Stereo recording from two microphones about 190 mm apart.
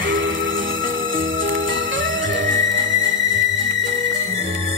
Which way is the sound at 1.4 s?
85° right.